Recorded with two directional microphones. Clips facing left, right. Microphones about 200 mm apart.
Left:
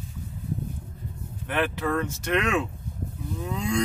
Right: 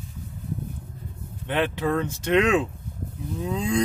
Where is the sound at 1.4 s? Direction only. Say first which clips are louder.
Right 2 dB; 20° right (ahead or behind).